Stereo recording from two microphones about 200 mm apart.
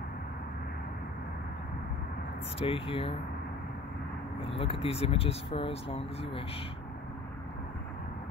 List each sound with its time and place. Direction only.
2.6 s speech: 25° left (ahead or behind)
4.4 s speech: 30° left (ahead or behind)